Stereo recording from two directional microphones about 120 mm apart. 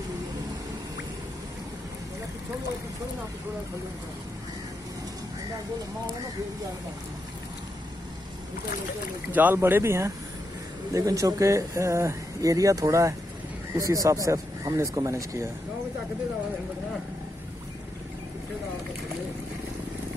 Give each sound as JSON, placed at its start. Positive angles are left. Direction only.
{"t": 9.3, "sound": "speech", "side_deg": -15}